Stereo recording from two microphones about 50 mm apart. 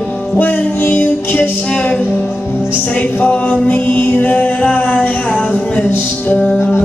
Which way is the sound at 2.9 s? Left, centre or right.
Left.